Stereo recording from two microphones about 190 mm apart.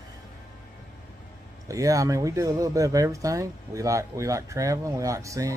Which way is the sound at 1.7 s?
15° right (ahead or behind).